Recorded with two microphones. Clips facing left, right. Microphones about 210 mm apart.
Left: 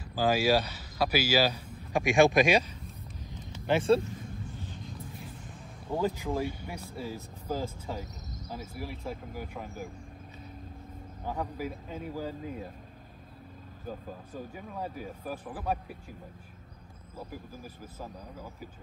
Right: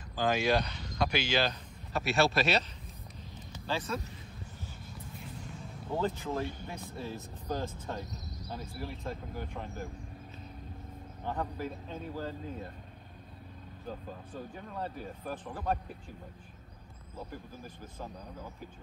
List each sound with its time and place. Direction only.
0.1 s speech: 5° left (ahead or behind)
3.6 s speech: 25° left (ahead or behind)
4.6 s vehicle: 5° right (ahead or behind)
5.9 s speech: 10° left (ahead or behind)
8.1 s cricket: 35° right (ahead or behind)
8.5 s speech: 10° left (ahead or behind)
11.2 s speech: 10° left (ahead or behind)
13.8 s speech: 10° left (ahead or behind)
17.9 s speech: 5° left (ahead or behind)